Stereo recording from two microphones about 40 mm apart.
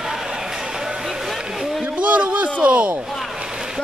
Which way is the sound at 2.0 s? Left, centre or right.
Right.